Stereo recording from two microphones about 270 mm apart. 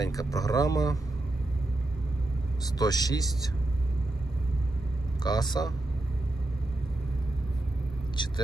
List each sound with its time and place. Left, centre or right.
0.0 s speech: centre
2.6 s speech: centre
5.2 s speech: centre
8.2 s vehicle: centre